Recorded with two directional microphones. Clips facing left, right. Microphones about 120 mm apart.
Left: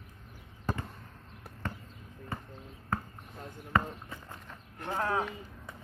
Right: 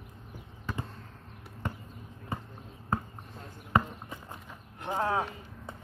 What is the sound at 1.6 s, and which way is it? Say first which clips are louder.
Basketball bounce: right 2 dB; 15° right (ahead or behind).